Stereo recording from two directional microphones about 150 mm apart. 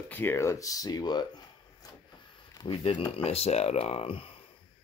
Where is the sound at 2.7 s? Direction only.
35° left (ahead or behind).